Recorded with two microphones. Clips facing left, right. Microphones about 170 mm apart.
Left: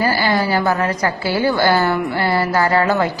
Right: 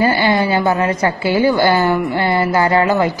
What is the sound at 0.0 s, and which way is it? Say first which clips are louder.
A woman's voice: right 3 dB; 20° right (ahead or behind).